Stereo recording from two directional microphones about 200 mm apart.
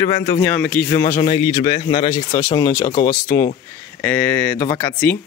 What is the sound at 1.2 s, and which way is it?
Speech, 25° left (ahead or behind).